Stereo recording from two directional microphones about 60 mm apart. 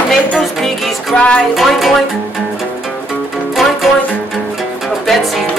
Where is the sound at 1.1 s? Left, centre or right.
Centre.